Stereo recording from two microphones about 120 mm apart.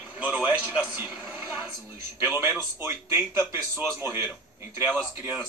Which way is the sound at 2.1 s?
20° right (ahead or behind).